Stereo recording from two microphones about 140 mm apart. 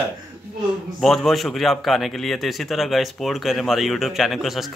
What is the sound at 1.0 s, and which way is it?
A man's voice, centre (ahead or behind).